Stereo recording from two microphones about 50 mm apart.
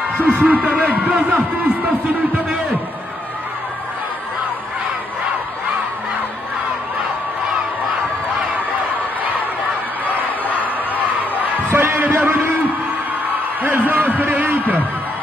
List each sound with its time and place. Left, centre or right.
0.2 s a man's voice: right
11.7 s heart sounds: right
13.6 s a sound: right